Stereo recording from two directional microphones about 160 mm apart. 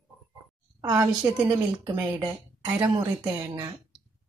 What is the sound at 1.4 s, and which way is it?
Speech, 15° right (ahead or behind).